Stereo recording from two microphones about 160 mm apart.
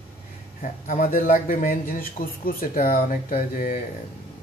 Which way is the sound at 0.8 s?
50° left (ahead or behind).